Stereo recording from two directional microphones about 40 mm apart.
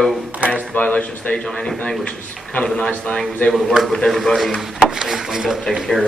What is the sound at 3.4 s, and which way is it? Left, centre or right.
Speech, left.